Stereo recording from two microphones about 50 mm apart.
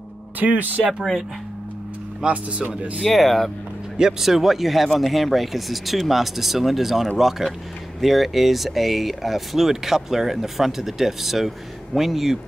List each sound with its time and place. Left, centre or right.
0.4 s speech: right
2.2 s speech: centre
3.0 s speech: centre